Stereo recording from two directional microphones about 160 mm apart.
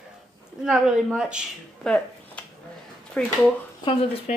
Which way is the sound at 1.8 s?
5° left (ahead or behind).